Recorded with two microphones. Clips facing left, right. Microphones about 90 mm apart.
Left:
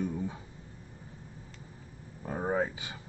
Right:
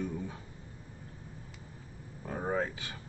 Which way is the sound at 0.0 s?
15° left (ahead or behind).